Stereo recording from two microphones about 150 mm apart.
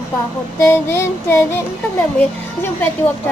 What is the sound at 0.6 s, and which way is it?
Speech, 15° left (ahead or behind).